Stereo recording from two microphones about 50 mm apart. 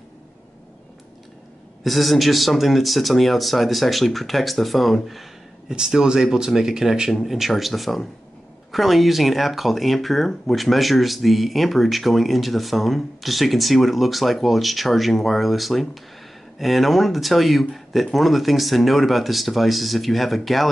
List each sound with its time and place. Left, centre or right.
1.8 s speech: centre
5.7 s speech: centre